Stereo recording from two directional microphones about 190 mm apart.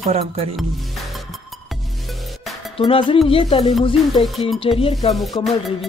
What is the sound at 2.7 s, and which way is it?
Music, 30° left (ahead or behind).